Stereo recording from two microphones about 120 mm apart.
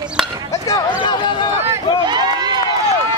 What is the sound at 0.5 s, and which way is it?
Chop, 30° left (ahead or behind).